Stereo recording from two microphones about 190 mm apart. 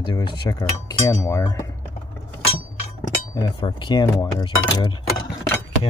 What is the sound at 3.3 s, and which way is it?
Speech, 20° left (ahead or behind).